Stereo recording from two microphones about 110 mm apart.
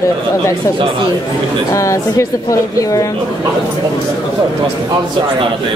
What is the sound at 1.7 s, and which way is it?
Speech, 30° left (ahead or behind).